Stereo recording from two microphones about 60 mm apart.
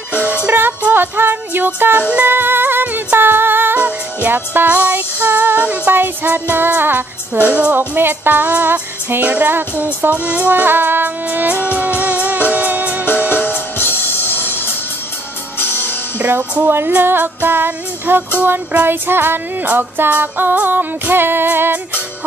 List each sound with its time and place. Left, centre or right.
0.5 s music: right
6.5 s female singing: right
7.4 s speech: right
7.7 s music: right
13.3 s music: left
16.2 s female singing: right